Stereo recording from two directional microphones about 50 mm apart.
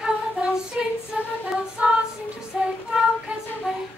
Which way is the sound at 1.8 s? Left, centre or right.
Right.